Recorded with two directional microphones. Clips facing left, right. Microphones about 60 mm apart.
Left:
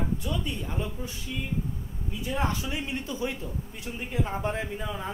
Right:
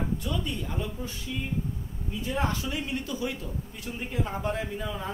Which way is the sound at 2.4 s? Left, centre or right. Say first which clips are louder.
Left 1 dB; centre.